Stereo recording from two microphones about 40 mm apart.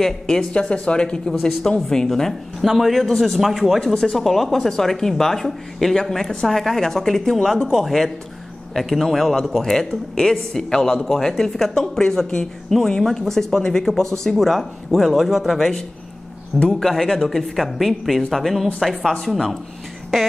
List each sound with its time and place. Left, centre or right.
0.0 s speech: centre
0.5 s speech: left; by 2.3 s centre
2.6 s speech: centre
3.8 s speech: centre
8.7 s speech: centre
16.5 s speech: centre
16.9 s speech: centre